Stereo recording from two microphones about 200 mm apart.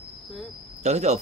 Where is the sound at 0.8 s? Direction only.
35° right (ahead or behind).